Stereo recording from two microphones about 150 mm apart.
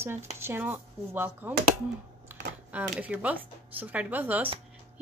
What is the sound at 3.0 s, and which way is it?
Speech, 10° right (ahead or behind).